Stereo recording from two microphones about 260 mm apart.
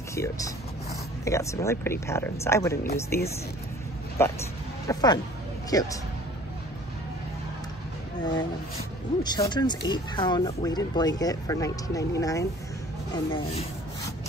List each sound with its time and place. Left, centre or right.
0.1 s speech: centre
4.2 s speech: centre
8.2 s speech: centre